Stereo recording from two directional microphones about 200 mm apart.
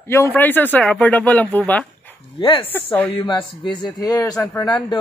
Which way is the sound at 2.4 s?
25° left (ahead or behind).